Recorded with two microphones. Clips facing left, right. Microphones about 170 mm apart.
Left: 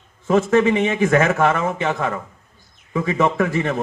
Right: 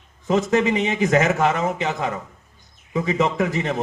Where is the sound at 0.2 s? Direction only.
15° right (ahead or behind).